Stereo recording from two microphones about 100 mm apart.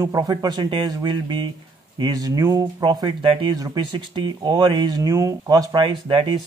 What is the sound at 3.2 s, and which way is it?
Speech, 65° right (ahead or behind).